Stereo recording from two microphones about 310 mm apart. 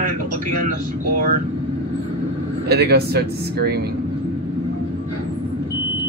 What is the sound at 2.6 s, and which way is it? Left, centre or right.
Speech, right.